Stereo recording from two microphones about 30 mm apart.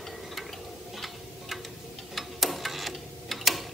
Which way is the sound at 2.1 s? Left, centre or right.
Centre.